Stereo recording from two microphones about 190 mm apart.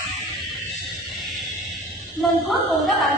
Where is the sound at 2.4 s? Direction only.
Centre (ahead or behind).